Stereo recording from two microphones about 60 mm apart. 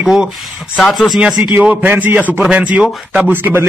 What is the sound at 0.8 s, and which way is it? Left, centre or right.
Speech, centre.